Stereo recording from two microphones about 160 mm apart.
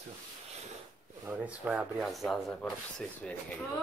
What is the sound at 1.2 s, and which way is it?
Speech, 10° right (ahead or behind).